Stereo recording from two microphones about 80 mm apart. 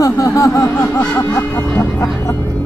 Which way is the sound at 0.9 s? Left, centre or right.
Left.